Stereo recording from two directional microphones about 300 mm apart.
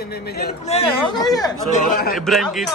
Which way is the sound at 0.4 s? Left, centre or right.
Left.